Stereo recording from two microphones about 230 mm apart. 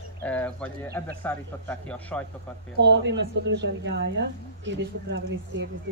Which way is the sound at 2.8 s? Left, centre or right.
Right.